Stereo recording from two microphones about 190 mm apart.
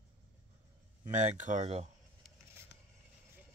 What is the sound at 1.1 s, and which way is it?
Speech, 40° right (ahead or behind).